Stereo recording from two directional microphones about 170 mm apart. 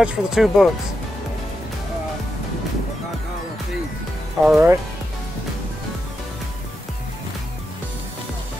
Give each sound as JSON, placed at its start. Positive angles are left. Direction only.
{"t": 0.0, "sound": "speech", "side_deg": 0}
{"t": 4.4, "sound": "speech", "side_deg": -5}